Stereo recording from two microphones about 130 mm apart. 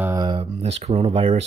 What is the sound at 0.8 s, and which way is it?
Speech, 55° right (ahead or behind).